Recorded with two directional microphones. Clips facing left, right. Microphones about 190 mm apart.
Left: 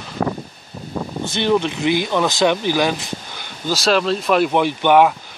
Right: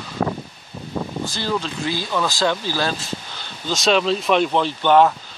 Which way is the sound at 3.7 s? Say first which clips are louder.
Left 1 dB; centre (ahead or behind).